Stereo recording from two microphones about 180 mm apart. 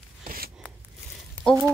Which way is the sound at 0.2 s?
55° right (ahead or behind).